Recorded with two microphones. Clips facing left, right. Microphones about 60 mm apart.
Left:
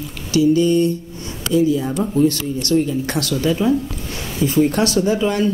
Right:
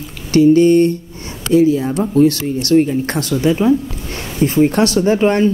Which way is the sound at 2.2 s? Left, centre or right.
Right.